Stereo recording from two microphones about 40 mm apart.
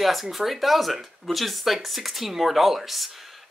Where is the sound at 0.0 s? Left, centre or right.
Centre.